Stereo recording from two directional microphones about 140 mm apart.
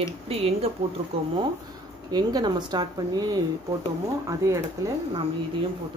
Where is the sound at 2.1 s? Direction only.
30° right (ahead or behind).